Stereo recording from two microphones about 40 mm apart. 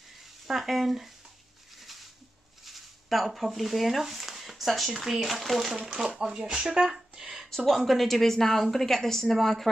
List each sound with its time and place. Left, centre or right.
0.5 s a woman's voice: centre
1.8 s a sound: centre
2.6 s a woman's voice: centre
6.0 s a woman's voice: centre